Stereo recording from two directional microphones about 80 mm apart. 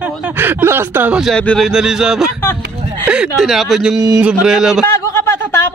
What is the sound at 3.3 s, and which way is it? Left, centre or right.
Speech, centre.